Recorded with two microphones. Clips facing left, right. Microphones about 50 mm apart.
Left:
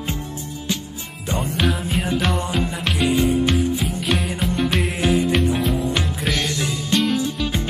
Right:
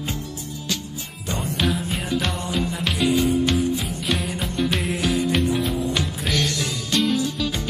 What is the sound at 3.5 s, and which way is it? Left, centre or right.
Music, centre.